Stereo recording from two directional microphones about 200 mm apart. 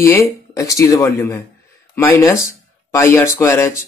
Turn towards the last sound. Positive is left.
turn(degrees=15)  # may be behind; listen again after turning